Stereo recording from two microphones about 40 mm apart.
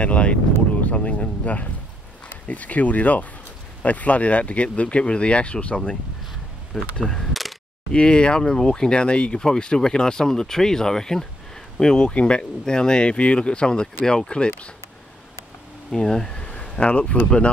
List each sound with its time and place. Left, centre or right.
0.0 s speech: left
7.0 s speech: centre
15.9 s speech: centre
16.4 s a sound: left